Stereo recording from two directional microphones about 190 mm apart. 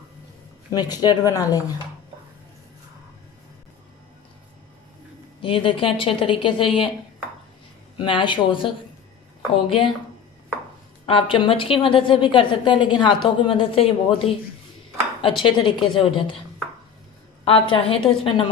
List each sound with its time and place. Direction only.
0.7 s a woman's voice: 20° left (ahead or behind)
5.4 s a woman's voice: 25° left (ahead or behind)
8.0 s a woman's voice: 25° left (ahead or behind)
11.1 s a woman's voice: 25° left (ahead or behind)
17.5 s a woman's voice: 25° left (ahead or behind)